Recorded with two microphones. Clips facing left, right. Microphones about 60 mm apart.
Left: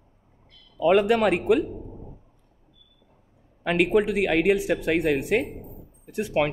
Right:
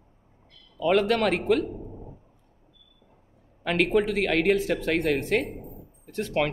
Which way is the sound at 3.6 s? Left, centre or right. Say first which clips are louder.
Left 2 dB; centre.